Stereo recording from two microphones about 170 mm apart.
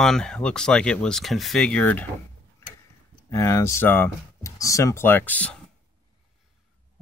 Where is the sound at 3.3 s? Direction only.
20° left (ahead or behind).